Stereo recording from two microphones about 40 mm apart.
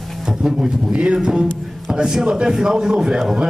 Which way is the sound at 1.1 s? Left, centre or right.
Right.